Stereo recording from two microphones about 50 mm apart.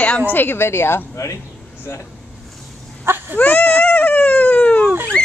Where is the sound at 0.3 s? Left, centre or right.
Left.